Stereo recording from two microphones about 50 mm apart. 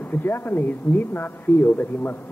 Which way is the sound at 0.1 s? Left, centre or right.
Left.